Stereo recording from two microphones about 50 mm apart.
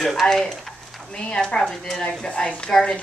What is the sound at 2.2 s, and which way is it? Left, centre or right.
Speech, left.